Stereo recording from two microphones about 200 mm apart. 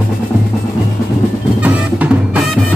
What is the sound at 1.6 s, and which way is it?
Music, 10° right (ahead or behind).